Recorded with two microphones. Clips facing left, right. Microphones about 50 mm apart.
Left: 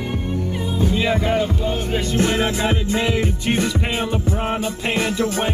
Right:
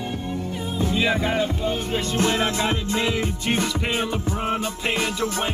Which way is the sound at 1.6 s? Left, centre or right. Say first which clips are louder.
Left 2 dB; left.